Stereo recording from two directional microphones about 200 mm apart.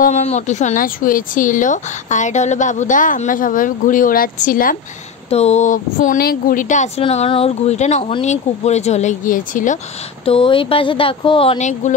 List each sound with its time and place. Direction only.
0.0 s speech: 35° left (ahead or behind)
5.3 s speech: 35° left (ahead or behind)
10.2 s speech: 25° left (ahead or behind)